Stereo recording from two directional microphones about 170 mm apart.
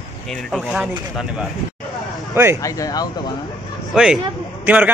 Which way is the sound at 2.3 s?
15° right (ahead or behind).